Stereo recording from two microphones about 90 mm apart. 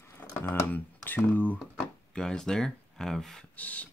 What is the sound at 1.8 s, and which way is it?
Speech, 10° left (ahead or behind).